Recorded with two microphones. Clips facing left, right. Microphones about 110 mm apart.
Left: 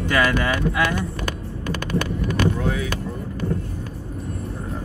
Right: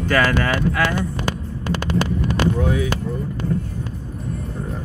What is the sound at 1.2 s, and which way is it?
Vehicle, 25° right (ahead or behind).